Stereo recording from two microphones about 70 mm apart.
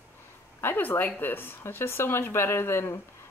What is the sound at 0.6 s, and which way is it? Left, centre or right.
Speech, left.